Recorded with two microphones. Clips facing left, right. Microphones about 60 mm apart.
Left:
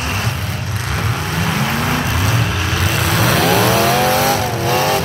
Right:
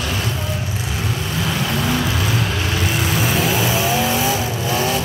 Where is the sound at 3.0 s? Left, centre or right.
Left.